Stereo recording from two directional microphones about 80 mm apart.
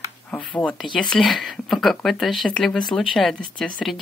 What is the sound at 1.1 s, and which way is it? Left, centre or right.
Speech, centre.